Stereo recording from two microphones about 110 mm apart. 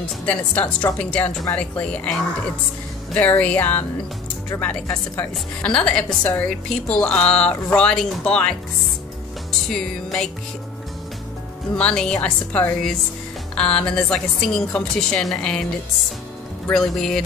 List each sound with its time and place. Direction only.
0.2 s a woman's voice: 10° left (ahead or behind)
9.7 s music: 5° left (ahead or behind)
11.7 s a woman's voice: 10° left (ahead or behind)
16.7 s music: 5° left (ahead or behind)